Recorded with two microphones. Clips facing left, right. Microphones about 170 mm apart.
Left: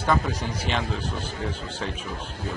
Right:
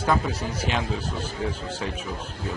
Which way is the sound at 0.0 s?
10° right (ahead or behind).